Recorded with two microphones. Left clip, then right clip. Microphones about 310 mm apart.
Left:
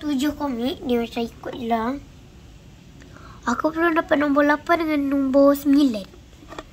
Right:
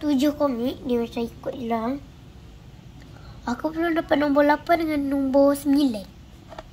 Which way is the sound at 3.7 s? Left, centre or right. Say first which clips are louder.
Left 1 dB; centre.